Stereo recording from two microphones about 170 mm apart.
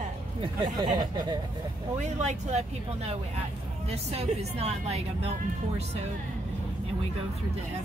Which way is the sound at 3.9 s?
40° right (ahead or behind).